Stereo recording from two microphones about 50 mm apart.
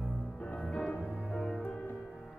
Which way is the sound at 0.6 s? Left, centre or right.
Centre.